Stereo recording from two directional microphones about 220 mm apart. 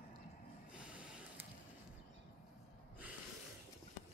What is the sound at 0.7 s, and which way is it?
Snort, 5° right (ahead or behind).